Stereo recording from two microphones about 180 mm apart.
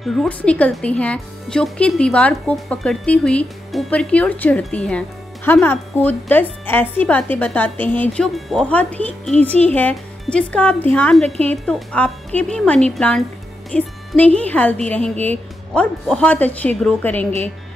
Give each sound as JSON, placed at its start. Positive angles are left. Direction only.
{"t": 0.0, "sound": "a woman's voice", "side_deg": 0}